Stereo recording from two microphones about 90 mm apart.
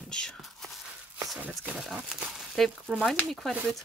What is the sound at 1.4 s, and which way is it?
Speech, 15° right (ahead or behind).